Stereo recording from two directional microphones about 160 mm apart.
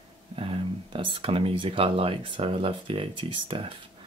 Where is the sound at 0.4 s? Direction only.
35° right (ahead or behind).